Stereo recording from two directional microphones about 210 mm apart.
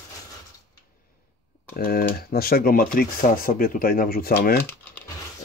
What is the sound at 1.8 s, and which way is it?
Speech, 45° left (ahead or behind).